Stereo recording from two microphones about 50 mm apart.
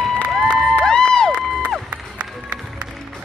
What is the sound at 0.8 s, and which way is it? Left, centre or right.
Music, centre.